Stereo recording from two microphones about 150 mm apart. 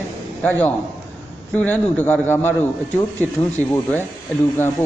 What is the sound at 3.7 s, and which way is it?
Speech, 15° left (ahead or behind).